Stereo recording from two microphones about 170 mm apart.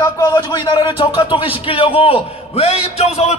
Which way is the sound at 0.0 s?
20° left (ahead or behind).